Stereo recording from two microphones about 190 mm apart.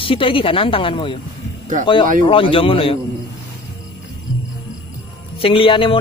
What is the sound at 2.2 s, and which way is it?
Speech, 25° left (ahead or behind).